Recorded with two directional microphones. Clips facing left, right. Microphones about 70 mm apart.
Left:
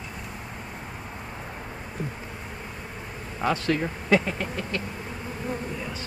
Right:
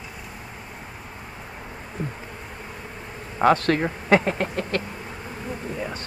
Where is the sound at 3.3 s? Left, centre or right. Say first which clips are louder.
Right 6 dB; right.